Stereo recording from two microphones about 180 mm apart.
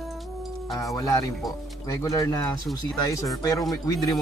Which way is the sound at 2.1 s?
20° left (ahead or behind).